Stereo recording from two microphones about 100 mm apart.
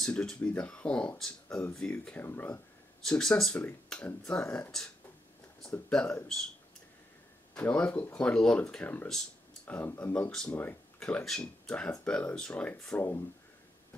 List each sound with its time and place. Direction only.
0.0 s speech: 10° left (ahead or behind)
3.0 s speech: 5° left (ahead or behind)
5.9 s speech: 5° left (ahead or behind)
7.5 s speech: 15° left (ahead or behind)
9.1 s a sound: 5° left (ahead or behind)
9.8 s speech: 20° left (ahead or behind)